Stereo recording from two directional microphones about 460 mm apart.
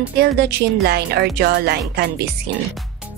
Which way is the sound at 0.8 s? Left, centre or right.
Right.